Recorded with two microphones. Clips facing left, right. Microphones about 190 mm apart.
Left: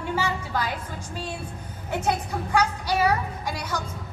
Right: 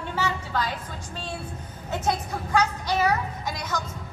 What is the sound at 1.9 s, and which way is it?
A woman's voice, 10° left (ahead or behind).